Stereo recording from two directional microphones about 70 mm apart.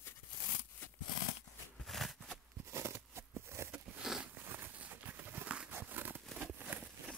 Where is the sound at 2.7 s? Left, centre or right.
Right.